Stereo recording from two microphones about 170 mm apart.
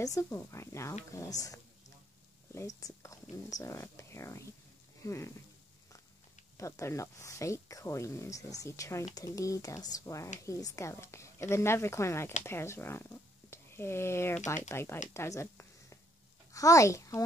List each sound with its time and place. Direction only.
0.0 s speech: 20° left (ahead or behind)
2.5 s speech: 20° left (ahead or behind)
6.5 s speech: 15° left (ahead or behind)
15.1 s a sound: 15° left (ahead or behind)
16.5 s speech: 20° left (ahead or behind)